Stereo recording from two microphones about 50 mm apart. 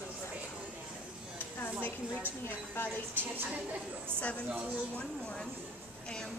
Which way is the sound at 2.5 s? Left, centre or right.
Left.